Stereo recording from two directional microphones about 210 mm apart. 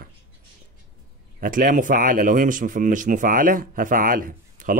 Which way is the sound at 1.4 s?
40° right (ahead or behind).